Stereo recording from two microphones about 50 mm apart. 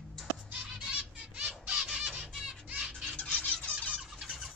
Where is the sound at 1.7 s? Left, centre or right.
Centre.